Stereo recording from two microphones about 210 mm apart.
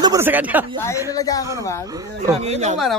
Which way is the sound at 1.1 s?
15° left (ahead or behind).